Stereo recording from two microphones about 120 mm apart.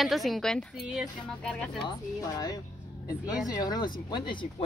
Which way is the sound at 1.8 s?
35° left (ahead or behind).